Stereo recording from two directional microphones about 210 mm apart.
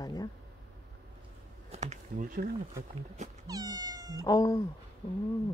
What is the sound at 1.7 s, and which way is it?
Speech, 35° right (ahead or behind).